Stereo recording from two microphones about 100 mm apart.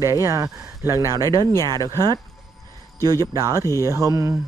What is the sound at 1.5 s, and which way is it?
A man's voice, 40° right (ahead or behind).